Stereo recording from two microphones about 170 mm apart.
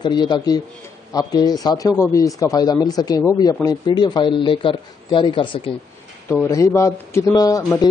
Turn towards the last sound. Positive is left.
turn(degrees=20)  # may be behind; listen again after turning